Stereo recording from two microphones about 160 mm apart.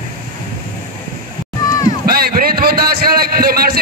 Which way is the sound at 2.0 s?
70° right (ahead or behind).